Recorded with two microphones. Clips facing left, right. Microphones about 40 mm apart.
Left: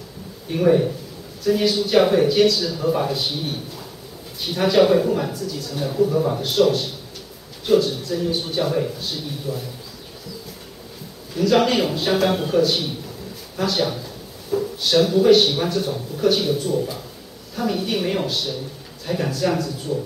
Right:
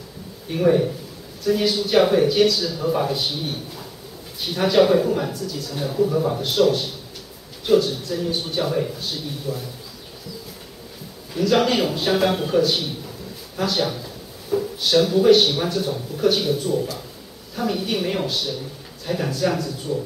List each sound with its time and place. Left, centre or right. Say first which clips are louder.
0.5 s speech: left 1 dB; centre
4.4 s speech: left 1 dB; centre
11.3 s speech: left 1 dB; centre
13.6 s a sound: left 1 dB; centre
15.0 s speech: even; centre